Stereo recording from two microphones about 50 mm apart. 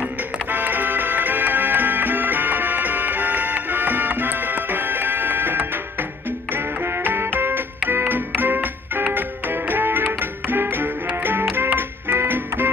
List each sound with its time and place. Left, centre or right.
0.5 s music: right